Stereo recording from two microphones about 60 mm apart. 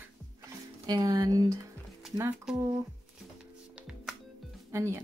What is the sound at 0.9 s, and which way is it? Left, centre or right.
Speech, right.